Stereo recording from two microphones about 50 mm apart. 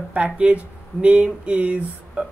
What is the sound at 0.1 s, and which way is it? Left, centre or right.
Speech, right.